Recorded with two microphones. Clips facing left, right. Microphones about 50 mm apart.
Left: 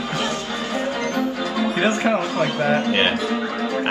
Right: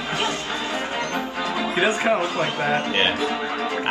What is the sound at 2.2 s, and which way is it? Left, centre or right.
Speech, right.